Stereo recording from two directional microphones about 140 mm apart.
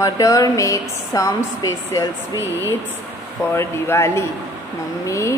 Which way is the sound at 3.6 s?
20° left (ahead or behind).